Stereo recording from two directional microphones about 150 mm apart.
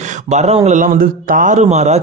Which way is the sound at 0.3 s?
50° right (ahead or behind).